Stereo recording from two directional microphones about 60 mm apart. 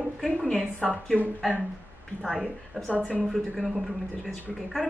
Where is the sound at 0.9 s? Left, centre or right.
Left.